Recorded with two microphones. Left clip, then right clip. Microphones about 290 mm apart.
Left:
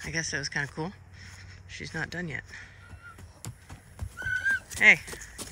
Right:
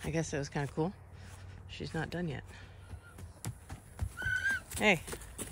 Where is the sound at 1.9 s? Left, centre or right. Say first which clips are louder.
Left 5 dB; centre.